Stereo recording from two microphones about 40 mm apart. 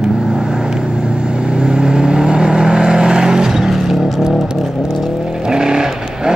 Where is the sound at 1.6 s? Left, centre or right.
Right.